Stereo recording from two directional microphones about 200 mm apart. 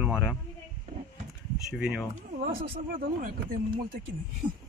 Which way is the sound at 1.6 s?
Centre (ahead or behind).